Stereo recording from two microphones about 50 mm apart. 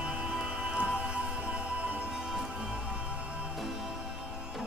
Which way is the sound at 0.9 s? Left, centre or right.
Right.